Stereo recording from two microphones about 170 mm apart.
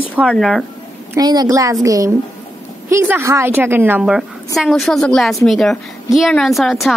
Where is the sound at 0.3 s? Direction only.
Centre (ahead or behind).